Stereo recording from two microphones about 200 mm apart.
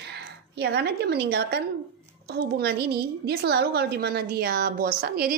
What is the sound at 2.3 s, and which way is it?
A woman's voice, 55° right (ahead or behind).